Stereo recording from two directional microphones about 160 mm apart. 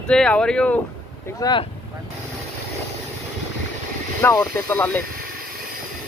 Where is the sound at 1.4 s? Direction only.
20° left (ahead or behind).